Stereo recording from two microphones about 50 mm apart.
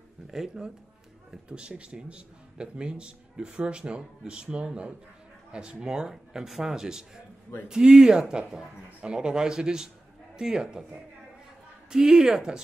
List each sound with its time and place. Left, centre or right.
0.3 s speech: centre
1.5 s a man's voice: right
11.9 s speech: centre